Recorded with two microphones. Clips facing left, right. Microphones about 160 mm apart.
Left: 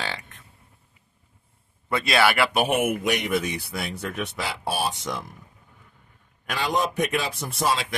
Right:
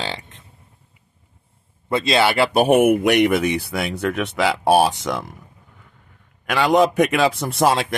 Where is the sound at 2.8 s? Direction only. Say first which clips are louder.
Right 10 dB; 60° right (ahead or behind); by 5.3 s 85° right.